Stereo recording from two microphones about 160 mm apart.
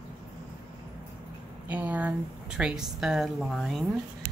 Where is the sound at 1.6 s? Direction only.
10° right (ahead or behind).